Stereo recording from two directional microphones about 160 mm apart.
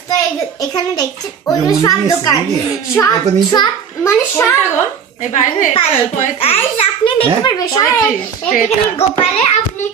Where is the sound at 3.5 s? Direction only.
20° left (ahead or behind).